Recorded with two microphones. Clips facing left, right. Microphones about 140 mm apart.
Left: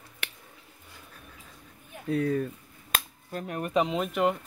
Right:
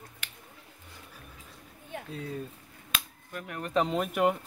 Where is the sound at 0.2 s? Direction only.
65° left (ahead or behind).